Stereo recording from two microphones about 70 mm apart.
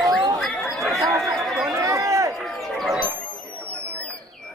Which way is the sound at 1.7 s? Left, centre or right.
Right.